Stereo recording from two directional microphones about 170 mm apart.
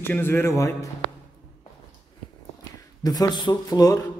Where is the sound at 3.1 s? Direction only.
25° left (ahead or behind).